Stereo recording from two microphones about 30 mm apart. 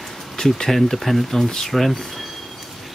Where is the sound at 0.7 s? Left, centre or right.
Centre.